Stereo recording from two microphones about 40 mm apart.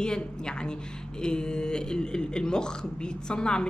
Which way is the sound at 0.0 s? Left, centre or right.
Left.